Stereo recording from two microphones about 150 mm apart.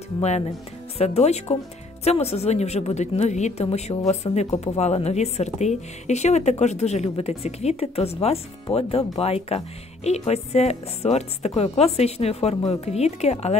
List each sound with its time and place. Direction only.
0.9 s a woman's voice: 45° left (ahead or behind)